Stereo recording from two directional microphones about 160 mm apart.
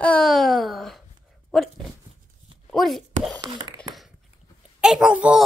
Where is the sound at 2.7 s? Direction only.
Centre (ahead or behind).